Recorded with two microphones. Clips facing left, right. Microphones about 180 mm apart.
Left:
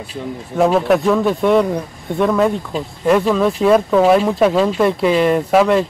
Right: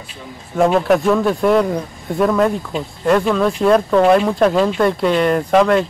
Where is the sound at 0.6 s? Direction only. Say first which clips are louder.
Even; centre (ahead or behind).